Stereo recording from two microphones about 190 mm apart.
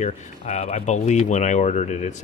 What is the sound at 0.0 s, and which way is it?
Speech, 35° left (ahead or behind).